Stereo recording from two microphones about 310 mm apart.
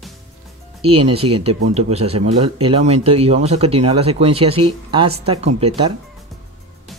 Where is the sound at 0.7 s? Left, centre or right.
Centre.